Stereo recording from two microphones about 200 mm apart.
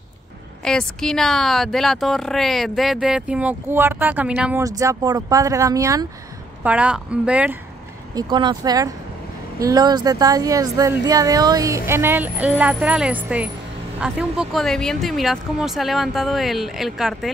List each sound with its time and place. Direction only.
0.7 s speech: 5° left (ahead or behind)
8.1 s speech: 20° right (ahead or behind); by 17.3 s centre (ahead or behind)